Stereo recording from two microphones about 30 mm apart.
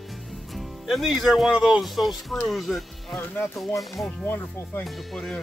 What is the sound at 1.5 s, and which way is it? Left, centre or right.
Speech, right.